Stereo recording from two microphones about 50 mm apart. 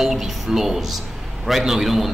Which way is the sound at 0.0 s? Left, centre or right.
Centre.